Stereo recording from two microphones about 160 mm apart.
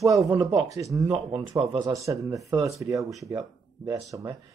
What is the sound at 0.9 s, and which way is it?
Speech, 30° right (ahead or behind).